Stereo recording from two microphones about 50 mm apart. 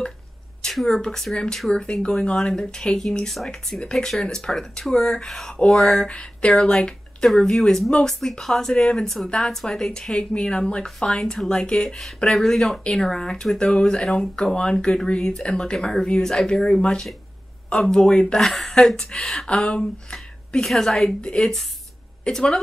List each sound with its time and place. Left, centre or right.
0.6 s speech: centre
21.0 s a woman's voice: centre